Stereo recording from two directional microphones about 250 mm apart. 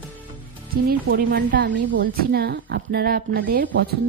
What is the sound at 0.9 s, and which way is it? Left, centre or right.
A woman's voice, right.